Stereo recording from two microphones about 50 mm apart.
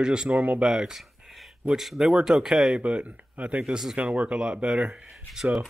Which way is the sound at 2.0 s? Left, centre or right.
Centre.